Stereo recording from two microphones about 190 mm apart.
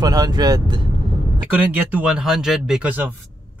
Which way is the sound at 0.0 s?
20° right (ahead or behind).